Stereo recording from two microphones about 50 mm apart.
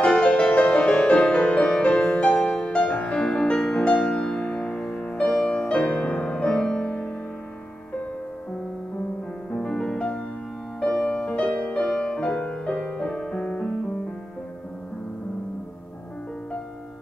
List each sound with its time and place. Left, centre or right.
0.0 s music: centre
4.7 s music: centre
5.6 s music: left
6.5 s music: centre
9.5 s music: centre